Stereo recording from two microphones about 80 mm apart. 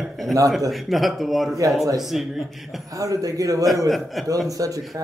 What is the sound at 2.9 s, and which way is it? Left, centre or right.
Speech, right.